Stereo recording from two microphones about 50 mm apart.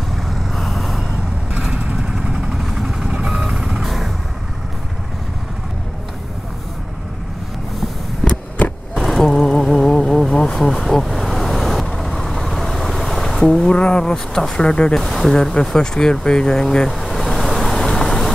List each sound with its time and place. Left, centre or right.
0.5 s vehicle: centre
2.0 s vehicle: centre
8.3 s a sound: left
8.9 s vehicle: centre
13.6 s a sound: centre
14.1 s speech: centre
16.9 s vehicle: centre